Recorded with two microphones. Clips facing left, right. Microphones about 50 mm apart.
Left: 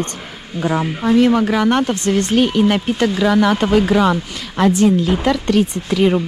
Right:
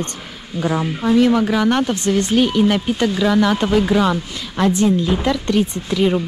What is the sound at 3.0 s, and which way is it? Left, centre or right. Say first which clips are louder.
Speech: left 3 dB; left.